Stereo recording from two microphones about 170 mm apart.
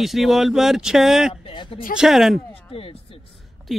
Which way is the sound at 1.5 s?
30° left (ahead or behind).